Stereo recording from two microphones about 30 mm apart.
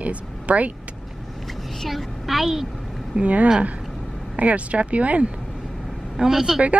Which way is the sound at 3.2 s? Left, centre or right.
Right.